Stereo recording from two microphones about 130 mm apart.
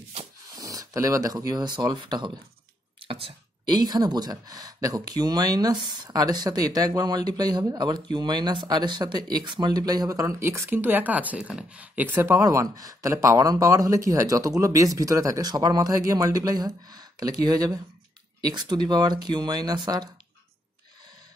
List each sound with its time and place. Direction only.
0.6 s speech: 25° right (ahead or behind)
3.0 s a sound: 45° right (ahead or behind)
3.7 s speech: 30° right (ahead or behind)